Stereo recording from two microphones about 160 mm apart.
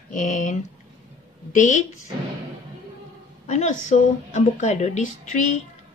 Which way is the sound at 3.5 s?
50° left (ahead or behind).